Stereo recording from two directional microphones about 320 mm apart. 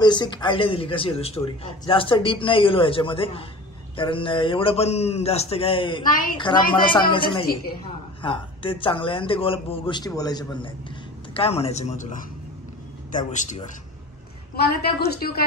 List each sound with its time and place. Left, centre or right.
0.0 s a man's voice: centre
13.3 s a man's voice: left